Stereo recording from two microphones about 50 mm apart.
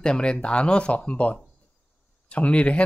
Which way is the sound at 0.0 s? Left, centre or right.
Centre.